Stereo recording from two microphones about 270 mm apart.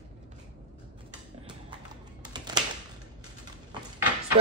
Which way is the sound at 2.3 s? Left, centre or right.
Centre.